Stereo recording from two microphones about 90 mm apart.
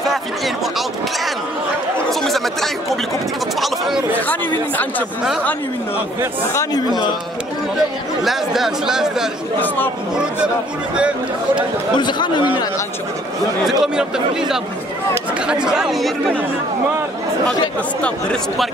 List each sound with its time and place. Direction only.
2.0 s chatter: centre (ahead or behind)
4.3 s speech: 20° left (ahead or behind)
8.2 s speech: 5° right (ahead or behind)
12.0 s speech: 60° left (ahead or behind)
13.7 s speech: 5° right (ahead or behind)